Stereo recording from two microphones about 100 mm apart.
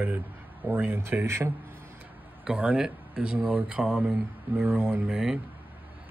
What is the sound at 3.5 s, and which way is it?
Speech, 15° right (ahead or behind).